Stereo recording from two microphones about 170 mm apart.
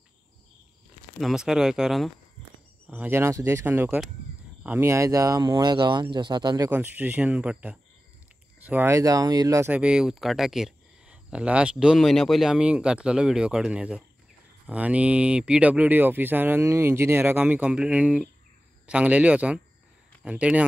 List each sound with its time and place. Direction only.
1.2 s speech: 5° right (ahead or behind); by 6.7 s 25° right (ahead or behind)
6.7 s speech: 10° right (ahead or behind)